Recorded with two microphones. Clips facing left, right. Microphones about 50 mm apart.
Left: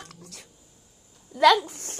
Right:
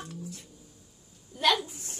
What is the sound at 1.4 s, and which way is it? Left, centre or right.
Speech, left.